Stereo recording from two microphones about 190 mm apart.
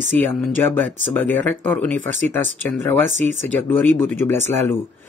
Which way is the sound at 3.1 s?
85° left.